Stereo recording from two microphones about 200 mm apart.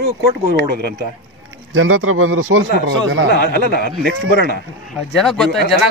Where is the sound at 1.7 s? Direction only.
85° right.